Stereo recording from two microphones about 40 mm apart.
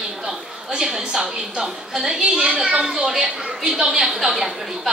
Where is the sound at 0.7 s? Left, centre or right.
Centre.